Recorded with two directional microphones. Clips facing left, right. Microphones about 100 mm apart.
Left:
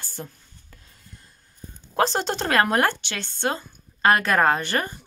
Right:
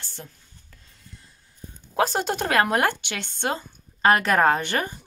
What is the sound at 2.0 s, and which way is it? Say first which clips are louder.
A woman's voice: even; 5° right (ahead or behind).